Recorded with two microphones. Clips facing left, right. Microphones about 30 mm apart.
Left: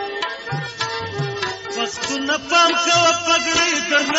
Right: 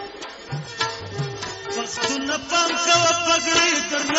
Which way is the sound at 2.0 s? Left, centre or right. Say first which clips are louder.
Left 3 dB; centre.